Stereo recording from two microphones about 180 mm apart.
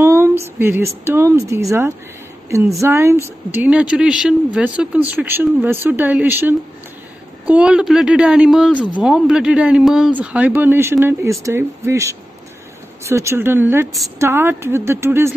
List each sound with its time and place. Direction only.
0.0 s speech: 15° right (ahead or behind)